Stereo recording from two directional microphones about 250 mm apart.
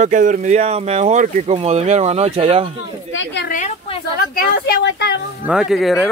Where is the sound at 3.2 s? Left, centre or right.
Left.